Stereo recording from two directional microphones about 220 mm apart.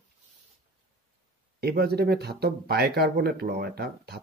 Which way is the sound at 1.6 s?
45° right (ahead or behind).